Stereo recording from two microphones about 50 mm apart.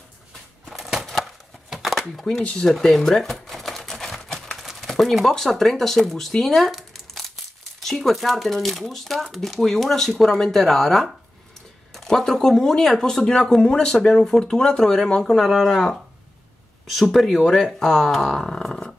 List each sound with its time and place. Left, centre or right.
0.7 s a sound: centre
1.2 s chopping: centre
2.4 s typewriter: centre
4.6 s a sound: centre
5.3 s speech: centre
6.7 s crumpling: centre
7.8 s speech: centre
15.2 s speech: centre